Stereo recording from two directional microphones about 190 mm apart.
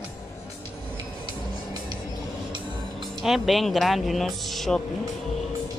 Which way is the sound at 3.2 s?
Centre (ahead or behind).